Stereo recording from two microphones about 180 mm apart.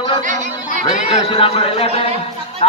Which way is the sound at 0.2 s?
45° right (ahead or behind).